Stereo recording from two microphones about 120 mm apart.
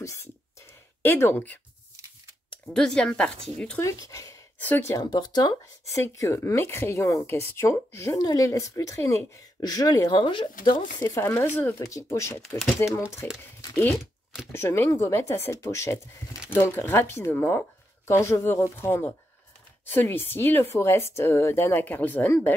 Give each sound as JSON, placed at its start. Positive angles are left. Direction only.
{"t": 0.0, "sound": "a sound", "side_deg": 25}
{"t": 1.0, "sound": "speech", "side_deg": 20}
{"t": 2.7, "sound": "speech", "side_deg": 5}
{"t": 3.8, "sound": "speech", "side_deg": 30}
{"t": 4.6, "sound": "speech", "side_deg": 15}
{"t": 4.9, "sound": "speech", "side_deg": 35}
{"t": 10.2, "sound": "speech", "side_deg": 45}
{"t": 11.0, "sound": "speech", "side_deg": 25}